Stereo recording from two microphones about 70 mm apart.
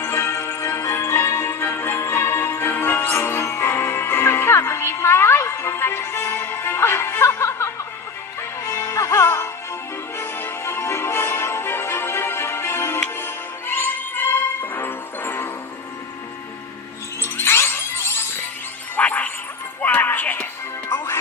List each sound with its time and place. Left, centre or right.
0.0 s music: left
17.2 s music: left
18.9 s a sound: left
19.8 s music: left
20.9 s music: left